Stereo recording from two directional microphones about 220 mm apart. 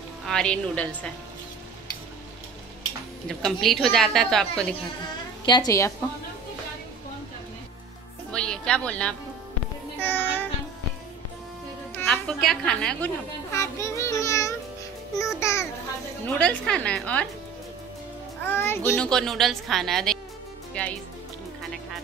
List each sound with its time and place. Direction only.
0.3 s a child's voice: 5° left (ahead or behind)
3.3 s a child's voice: centre (ahead or behind)
5.4 s a woman's voice: 20° left (ahead or behind)
8.3 s speech: 5° left (ahead or behind)
9.9 s child singing: 10° left (ahead or behind)
11.9 s a woman's voice: 5° left (ahead or behind)
15.1 s music: 15° left (ahead or behind)
16.3 s a child's voice: 5° left (ahead or behind)
18.4 s a child's voice: 10° left (ahead or behind)